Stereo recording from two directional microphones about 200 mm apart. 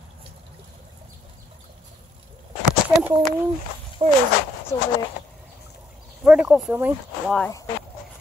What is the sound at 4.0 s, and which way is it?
Speech, 25° right (ahead or behind).